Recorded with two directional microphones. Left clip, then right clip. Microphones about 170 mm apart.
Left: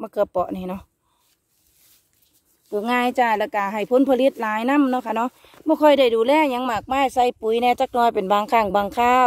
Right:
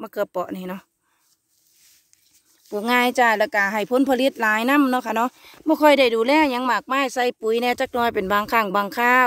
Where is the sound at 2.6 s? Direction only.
15° right (ahead or behind).